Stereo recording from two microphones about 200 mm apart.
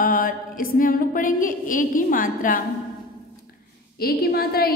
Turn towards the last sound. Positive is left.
turn(degrees=50)  # may be behind; listen again after turning